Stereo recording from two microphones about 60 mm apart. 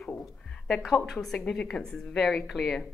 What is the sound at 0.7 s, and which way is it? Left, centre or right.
A woman's voice, centre.